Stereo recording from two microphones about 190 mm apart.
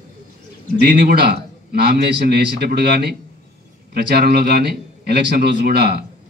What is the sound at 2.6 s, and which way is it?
Speech, 55° right (ahead or behind).